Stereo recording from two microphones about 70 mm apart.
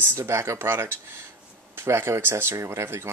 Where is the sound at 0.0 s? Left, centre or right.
Right.